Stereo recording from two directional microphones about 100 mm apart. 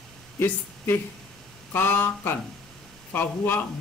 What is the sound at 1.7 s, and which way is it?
Speech, 20° left (ahead or behind).